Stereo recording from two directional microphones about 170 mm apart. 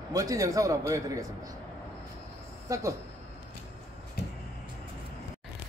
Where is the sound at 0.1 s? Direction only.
20° right (ahead or behind).